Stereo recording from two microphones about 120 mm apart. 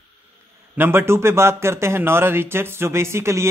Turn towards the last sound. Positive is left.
turn(degrees=-20)  # may be behind; listen again after turning